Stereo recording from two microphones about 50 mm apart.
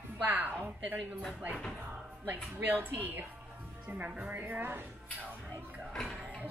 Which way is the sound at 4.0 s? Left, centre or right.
Right.